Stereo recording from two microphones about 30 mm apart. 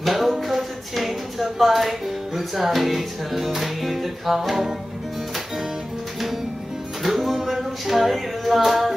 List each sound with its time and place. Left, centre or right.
0.0 s a sound: centre
1.6 s music: centre
7.0 s music: centre